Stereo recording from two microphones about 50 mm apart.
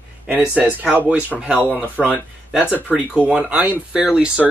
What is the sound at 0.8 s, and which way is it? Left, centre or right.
Speech, right.